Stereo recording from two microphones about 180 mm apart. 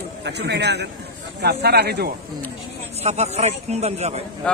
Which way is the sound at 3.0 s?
35° right (ahead or behind).